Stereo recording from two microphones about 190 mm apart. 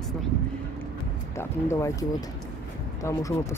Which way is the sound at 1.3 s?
15° left (ahead or behind).